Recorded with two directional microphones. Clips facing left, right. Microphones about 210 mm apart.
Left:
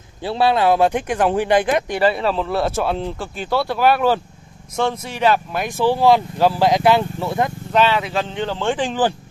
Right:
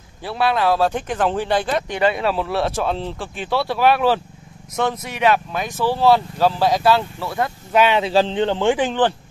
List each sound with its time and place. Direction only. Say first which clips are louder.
0.2 s speech: left 3 dB; 25° left (ahead or behind); by 5.1 s centre (ahead or behind)
5.5 s speech: left 3 dB; 10° left (ahead or behind)
7.7 s speech: right 1 dB; 15° right (ahead or behind)
8.0 s speech: right 6 dB; 30° right (ahead or behind)
8.5 s speech: right 2 dB; 15° right (ahead or behind)
8.8 s speech: right 1 dB; 5° left (ahead or behind)